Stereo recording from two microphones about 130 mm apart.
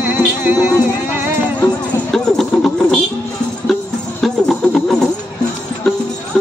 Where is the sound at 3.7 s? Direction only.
Centre (ahead or behind).